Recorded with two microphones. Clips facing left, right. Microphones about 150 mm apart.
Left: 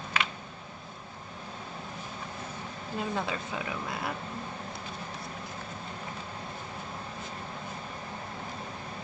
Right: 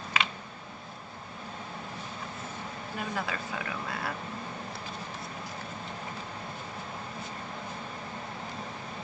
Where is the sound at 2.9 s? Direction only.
25° left (ahead or behind).